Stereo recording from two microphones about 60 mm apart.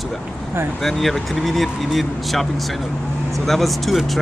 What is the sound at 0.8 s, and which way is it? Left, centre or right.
Speech, centre.